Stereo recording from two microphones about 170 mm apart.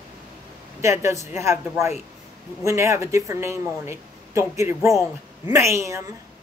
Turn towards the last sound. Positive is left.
turn(degrees=-15)  # may be behind; listen again after turning